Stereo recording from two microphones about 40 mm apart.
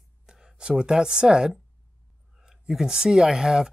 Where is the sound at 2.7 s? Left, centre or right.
Centre.